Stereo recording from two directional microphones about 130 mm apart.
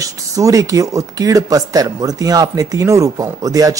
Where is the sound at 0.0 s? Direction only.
25° right (ahead or behind).